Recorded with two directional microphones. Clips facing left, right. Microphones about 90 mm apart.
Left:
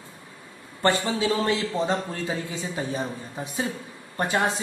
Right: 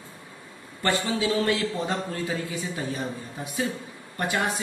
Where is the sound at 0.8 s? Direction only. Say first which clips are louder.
Left 2 dB; 25° left (ahead or behind).